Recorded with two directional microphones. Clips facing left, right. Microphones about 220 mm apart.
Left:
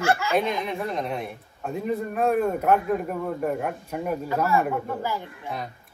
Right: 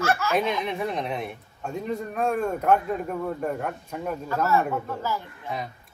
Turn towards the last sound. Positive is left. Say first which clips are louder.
# left 1 dB
turn(degrees=15)  # may be behind; listen again after turning